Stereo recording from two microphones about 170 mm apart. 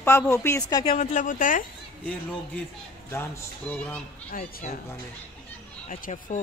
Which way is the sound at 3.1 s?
10° left (ahead or behind).